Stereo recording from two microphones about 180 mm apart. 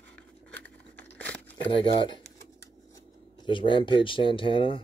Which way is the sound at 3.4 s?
25° left (ahead or behind).